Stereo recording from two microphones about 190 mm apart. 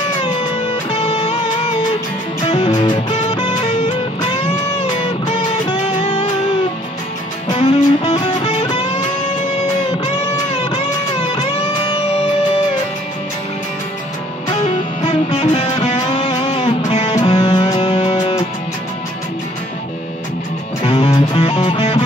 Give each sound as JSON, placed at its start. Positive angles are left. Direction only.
{"t": 0.9, "sound": "music", "side_deg": 35}
{"t": 2.4, "sound": "music", "side_deg": 25}
{"t": 7.4, "sound": "music", "side_deg": 30}
{"t": 10.5, "sound": "music", "side_deg": 35}
{"t": 15.0, "sound": "music", "side_deg": 35}
{"t": 17.4, "sound": "music", "side_deg": 20}
{"t": 20.8, "sound": "music", "side_deg": 30}